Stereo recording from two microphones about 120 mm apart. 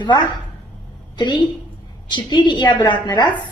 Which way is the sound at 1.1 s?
40° left (ahead or behind).